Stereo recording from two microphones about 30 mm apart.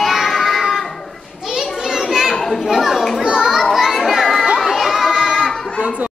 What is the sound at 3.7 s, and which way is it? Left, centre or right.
Children playing, centre.